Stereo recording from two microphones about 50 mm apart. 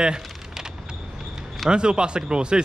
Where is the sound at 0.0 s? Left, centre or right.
Centre.